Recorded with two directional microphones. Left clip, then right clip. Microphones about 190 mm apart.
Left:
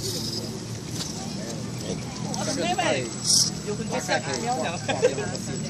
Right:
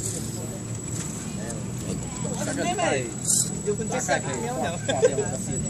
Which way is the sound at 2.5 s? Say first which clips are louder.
Even; 50° right (ahead or behind).